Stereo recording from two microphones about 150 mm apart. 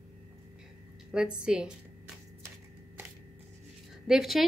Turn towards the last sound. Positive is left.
turn(degrees=0)  # may be behind; listen again after turning